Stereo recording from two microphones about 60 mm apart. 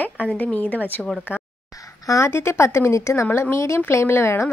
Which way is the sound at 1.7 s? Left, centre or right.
Left.